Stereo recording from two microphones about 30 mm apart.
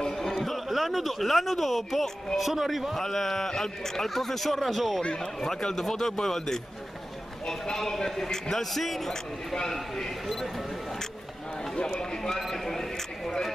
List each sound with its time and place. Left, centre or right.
0.3 s a man's voice: centre
3.0 s a man's voice: centre
5.8 s a man's voice: centre
12.4 s a man's voice: centre